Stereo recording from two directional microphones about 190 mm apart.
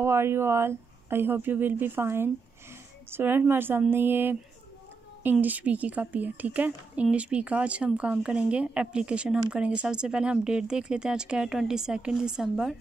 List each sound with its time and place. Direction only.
0.0 s a woman's voice: 15° right (ahead or behind)